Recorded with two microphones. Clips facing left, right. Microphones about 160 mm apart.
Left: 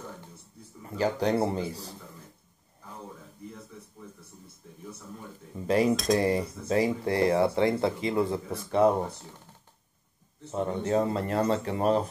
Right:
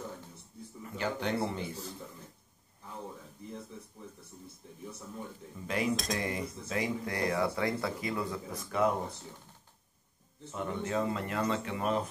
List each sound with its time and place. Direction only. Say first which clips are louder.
0.9 s speech: left 7 dB; 35° left (ahead or behind)
5.7 s speech: left 9 dB; 35° left (ahead or behind)
10.5 s speech: left 7 dB; 35° left (ahead or behind)